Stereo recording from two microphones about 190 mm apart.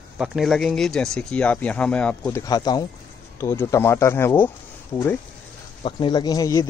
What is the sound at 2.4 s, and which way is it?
Speech, 20° left (ahead or behind).